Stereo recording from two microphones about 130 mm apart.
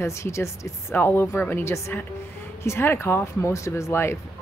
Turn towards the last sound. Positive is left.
turn(degrees=20)  # may be behind; listen again after turning